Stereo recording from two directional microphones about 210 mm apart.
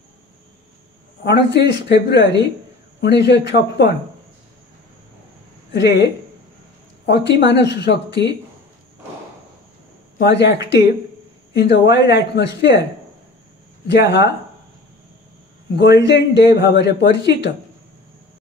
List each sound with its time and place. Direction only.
1.2 s speech: 55° left (ahead or behind)
5.7 s speech: 55° left (ahead or behind)
7.1 s speech: 55° left (ahead or behind)
10.1 s speech: 55° left (ahead or behind)
13.8 s speech: 55° left (ahead or behind)
15.7 s speech: 55° left (ahead or behind)